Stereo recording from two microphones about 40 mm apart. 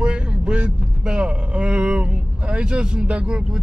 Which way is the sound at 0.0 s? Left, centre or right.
Right.